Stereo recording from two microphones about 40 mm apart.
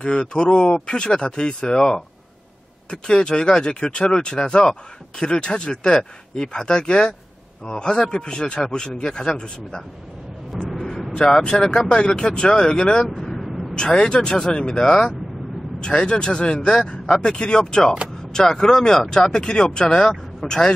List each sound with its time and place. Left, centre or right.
0.0 s speech: left
10.5 s speech: centre
11.1 s speech: centre
13.1 s vehicle: centre
13.4 s a sound: centre
13.7 s speech: left